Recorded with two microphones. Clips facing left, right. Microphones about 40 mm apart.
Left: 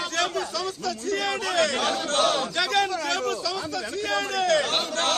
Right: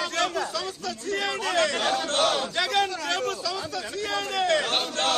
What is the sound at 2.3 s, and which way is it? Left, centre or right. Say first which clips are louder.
Speech: left 1 dB; centre.